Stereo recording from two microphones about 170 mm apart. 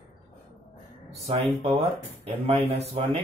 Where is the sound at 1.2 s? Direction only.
35° right (ahead or behind).